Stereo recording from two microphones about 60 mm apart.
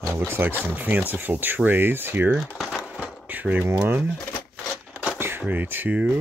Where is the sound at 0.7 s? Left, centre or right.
Right.